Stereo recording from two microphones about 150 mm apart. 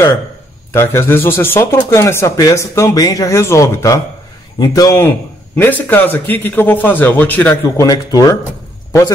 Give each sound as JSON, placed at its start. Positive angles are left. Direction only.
{"t": 0.7, "sound": "a man's voice", "side_deg": 15}
{"t": 7.8, "sound": "speech", "side_deg": 25}